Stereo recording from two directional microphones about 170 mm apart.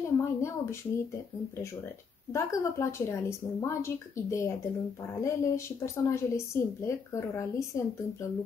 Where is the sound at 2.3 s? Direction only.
15° left (ahead or behind).